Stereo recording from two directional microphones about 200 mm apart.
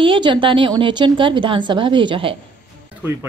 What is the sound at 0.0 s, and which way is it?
A woman's voice, 25° right (ahead or behind).